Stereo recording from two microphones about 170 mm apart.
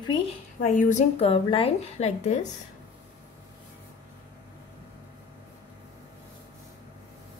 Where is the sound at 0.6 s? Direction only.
50° left (ahead or behind).